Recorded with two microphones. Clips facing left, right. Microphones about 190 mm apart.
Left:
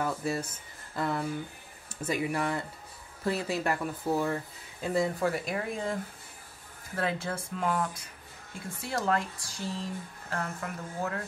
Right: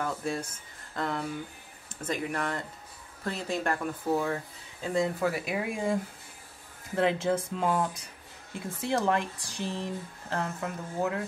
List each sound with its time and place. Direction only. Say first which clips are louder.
0.0 s speech: left 1 dB; 5° left (ahead or behind); by 5.9 s 10° right (ahead or behind)
7.0 s speech: right 6 dB; 20° right (ahead or behind)